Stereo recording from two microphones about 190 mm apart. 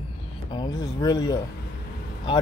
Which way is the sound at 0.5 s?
25° left (ahead or behind).